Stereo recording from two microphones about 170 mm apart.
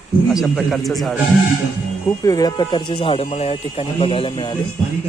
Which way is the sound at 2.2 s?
25° left (ahead or behind).